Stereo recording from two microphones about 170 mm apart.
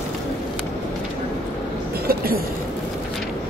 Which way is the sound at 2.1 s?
60° right (ahead or behind).